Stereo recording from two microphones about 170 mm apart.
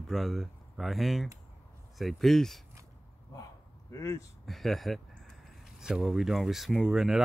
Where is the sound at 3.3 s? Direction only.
20° left (ahead or behind).